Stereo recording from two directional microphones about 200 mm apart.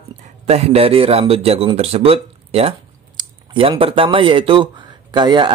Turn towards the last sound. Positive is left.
turn(degrees=-25)  # may be behind; listen again after turning